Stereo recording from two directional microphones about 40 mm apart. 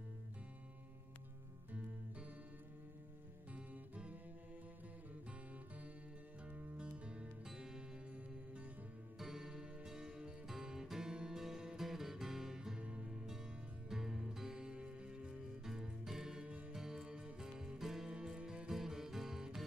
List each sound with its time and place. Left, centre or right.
3.5 s music: right
6.4 s music: right
7.5 s music: centre
9.2 s music: centre
10.9 s guitar: centre
13.8 s music: centre
14.5 s music: right
15.6 s music: centre
18.1 s music: right
18.7 s music: centre